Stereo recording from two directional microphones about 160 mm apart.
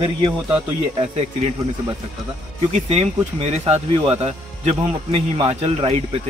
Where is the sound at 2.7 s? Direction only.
40° right (ahead or behind).